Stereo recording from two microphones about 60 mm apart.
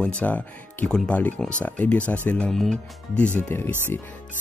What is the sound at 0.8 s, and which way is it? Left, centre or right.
Speech, centre.